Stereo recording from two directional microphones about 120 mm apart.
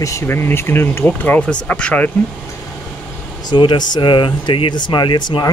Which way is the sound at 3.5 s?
35° left (ahead or behind).